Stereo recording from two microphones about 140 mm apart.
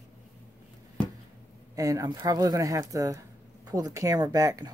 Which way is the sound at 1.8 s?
25° right (ahead or behind).